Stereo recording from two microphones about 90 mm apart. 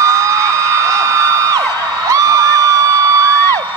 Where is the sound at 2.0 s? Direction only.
35° right (ahead or behind).